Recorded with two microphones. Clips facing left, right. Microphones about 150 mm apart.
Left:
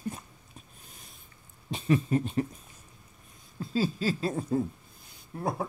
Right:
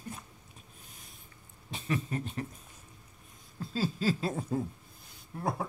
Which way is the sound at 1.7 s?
25° left (ahead or behind).